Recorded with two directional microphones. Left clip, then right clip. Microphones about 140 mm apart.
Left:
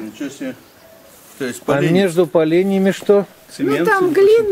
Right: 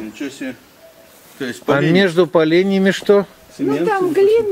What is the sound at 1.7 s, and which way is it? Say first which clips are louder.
Speech: right 1 dB; 20° right (ahead or behind).